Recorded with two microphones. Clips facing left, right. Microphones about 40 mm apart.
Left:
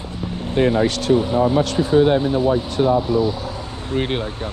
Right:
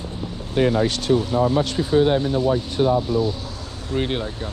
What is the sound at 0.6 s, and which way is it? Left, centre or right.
Speech, left.